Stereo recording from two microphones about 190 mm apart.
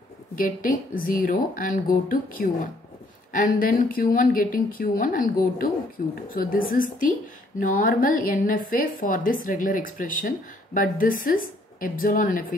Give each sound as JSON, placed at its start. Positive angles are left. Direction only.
{"t": 0.4, "sound": "speech", "side_deg": 45}